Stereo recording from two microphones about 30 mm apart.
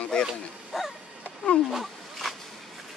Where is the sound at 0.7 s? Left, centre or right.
Centre.